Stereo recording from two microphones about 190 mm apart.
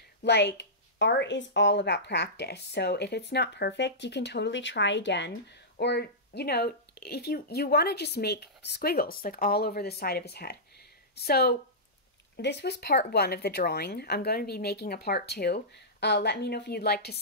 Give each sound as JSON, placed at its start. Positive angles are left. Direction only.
{"t": 0.2, "sound": "speech", "side_deg": 65}